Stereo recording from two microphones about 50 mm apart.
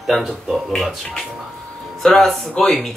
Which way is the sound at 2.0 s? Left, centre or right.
Centre.